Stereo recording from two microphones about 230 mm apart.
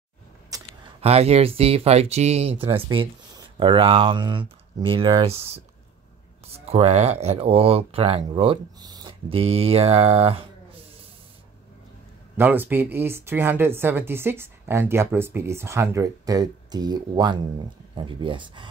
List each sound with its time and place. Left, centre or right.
0.5 s a sound: centre
1.0 s speech: right
12.4 s speech: centre